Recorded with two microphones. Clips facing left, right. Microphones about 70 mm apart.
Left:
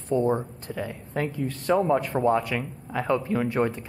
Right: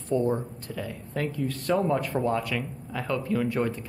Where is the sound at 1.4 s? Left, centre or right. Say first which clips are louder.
Left 3 dB; centre.